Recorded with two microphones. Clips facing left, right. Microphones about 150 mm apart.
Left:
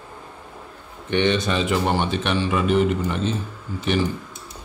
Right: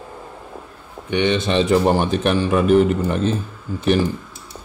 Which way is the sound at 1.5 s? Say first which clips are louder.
Right 6 dB; 35° right (ahead or behind).